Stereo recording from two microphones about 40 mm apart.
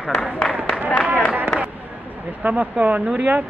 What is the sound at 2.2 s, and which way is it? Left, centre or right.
Speech, right.